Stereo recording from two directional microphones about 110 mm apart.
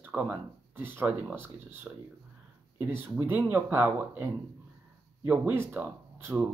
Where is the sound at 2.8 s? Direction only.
20° right (ahead or behind).